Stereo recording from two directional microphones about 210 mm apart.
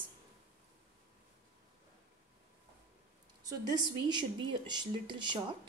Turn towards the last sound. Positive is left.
turn(degrees=-20)  # may be behind; listen again after turning